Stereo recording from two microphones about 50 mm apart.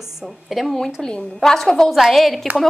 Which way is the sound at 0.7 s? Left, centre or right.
Centre.